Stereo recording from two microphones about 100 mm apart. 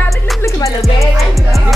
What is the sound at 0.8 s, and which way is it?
Music, centre (ahead or behind).